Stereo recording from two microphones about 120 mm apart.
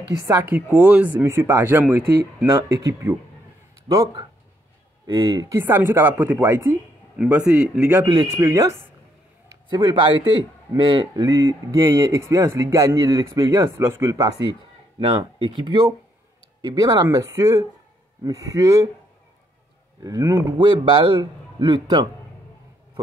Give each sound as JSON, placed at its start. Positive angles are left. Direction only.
{"t": 0.3, "sound": "speech", "side_deg": -15}
{"t": 1.2, "sound": "speech", "side_deg": -25}
{"t": 2.5, "sound": "speech", "side_deg": -30}
{"t": 3.9, "sound": "a man's voice", "side_deg": -35}
{"t": 5.5, "sound": "speech", "side_deg": -20}
{"t": 8.4, "sound": "speech", "side_deg": -25}
{"t": 9.7, "sound": "a man's voice", "side_deg": -35}
{"t": 11.2, "sound": "speech", "side_deg": -25}
{"t": 15.0, "sound": "a man's voice", "side_deg": -45}
{"t": 16.6, "sound": "a man's voice", "side_deg": -30}
{"t": 20.0, "sound": "speech", "side_deg": -30}
{"t": 20.5, "sound": "a man's voice", "side_deg": -40}